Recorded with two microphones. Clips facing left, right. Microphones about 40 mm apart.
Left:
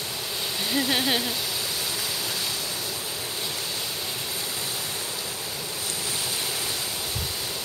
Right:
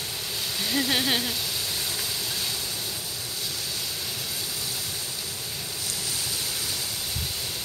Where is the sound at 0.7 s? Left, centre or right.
Centre.